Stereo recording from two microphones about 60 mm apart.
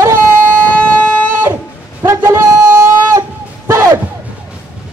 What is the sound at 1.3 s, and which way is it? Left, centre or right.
Music, right.